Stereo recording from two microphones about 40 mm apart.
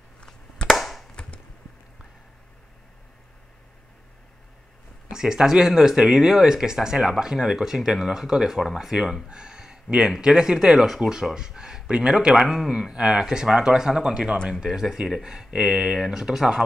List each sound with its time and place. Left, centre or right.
0.7 s chop: centre
5.1 s speech: centre
12.9 s speech: right